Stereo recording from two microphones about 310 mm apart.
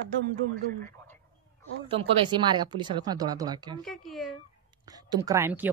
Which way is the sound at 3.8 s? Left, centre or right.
Centre.